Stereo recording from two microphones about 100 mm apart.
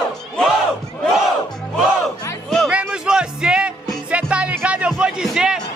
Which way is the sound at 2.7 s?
10° right (ahead or behind).